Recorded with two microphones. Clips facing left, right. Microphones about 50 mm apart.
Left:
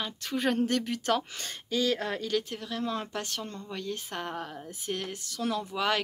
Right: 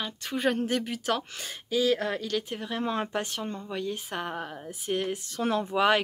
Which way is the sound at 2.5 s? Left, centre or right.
Right.